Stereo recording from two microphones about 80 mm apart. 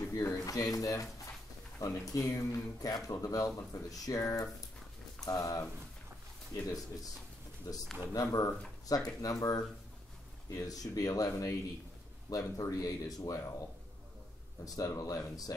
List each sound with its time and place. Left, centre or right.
0.1 s a sound: left
1.8 s speech: left
6.6 s speech: left
14.6 s speech: left